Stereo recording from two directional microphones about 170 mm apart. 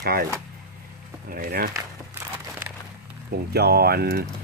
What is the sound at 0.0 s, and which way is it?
Speech, 65° right (ahead or behind).